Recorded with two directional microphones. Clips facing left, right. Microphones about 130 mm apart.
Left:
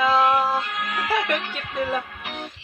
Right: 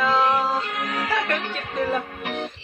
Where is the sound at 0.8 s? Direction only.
45° right (ahead or behind).